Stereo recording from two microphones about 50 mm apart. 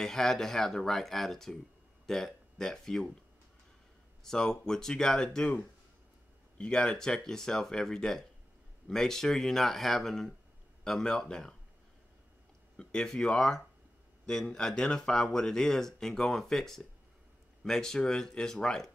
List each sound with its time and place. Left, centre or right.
0.0 s speech: centre
4.2 s speech: centre
6.6 s speech: centre
12.7 s speech: centre